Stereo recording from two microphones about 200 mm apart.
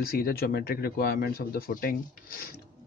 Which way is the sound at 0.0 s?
50° left (ahead or behind).